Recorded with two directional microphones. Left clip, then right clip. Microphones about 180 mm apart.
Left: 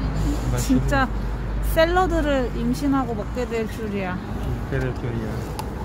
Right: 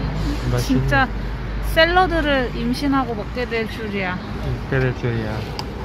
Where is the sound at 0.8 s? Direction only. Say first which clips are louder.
Right 4 dB; 15° left (ahead or behind).